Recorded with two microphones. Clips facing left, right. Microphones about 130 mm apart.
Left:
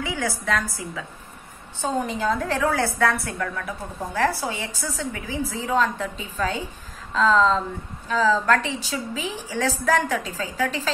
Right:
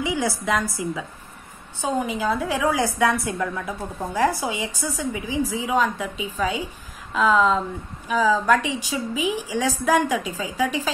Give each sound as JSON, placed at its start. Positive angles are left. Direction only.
{"t": 0.0, "sound": "a woman's voice", "side_deg": -15}